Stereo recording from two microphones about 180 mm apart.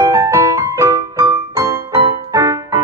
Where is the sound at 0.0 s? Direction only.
15° right (ahead or behind).